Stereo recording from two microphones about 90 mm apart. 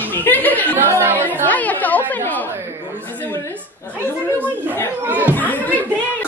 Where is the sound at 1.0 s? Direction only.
25° right (ahead or behind).